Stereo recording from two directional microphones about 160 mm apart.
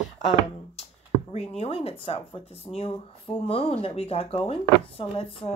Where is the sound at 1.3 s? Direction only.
40° left (ahead or behind).